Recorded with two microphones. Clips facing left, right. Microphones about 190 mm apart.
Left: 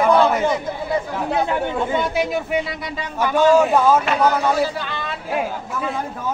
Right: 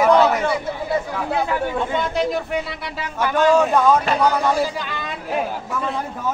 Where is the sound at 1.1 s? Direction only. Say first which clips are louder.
Left 1 dB; 20° left (ahead or behind).